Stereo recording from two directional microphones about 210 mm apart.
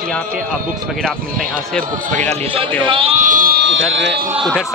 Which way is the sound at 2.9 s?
25° right (ahead or behind).